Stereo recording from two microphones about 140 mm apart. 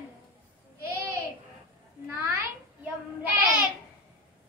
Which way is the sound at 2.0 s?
15° right (ahead or behind).